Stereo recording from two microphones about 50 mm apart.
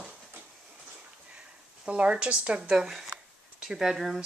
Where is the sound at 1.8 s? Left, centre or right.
Right.